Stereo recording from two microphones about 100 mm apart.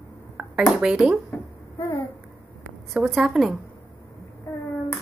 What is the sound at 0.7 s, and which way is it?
Speech, 5° right (ahead or behind).